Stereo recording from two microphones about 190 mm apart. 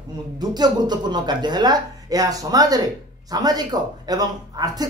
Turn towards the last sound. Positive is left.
turn(degrees=-20)  # may be behind; listen again after turning